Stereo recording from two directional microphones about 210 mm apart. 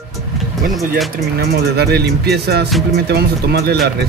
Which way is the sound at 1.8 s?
50° right (ahead or behind).